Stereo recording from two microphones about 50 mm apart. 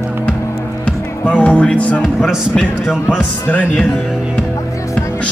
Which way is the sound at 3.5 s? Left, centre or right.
Left.